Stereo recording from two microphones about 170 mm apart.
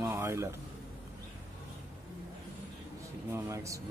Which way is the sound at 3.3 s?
15° right (ahead or behind).